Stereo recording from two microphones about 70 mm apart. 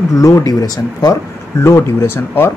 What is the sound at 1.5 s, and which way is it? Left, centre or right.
Speech, left.